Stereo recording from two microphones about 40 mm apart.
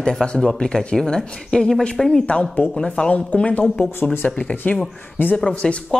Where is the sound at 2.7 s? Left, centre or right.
Left.